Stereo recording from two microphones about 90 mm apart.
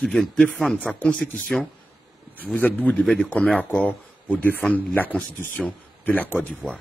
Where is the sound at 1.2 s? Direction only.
5° left (ahead or behind).